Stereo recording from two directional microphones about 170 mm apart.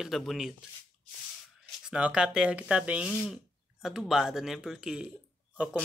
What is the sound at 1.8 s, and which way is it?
Speech, 5° right (ahead or behind).